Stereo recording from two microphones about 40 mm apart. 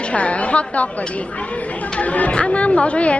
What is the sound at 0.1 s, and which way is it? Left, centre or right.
Speech, left.